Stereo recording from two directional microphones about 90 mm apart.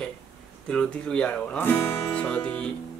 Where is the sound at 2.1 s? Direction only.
15° left (ahead or behind).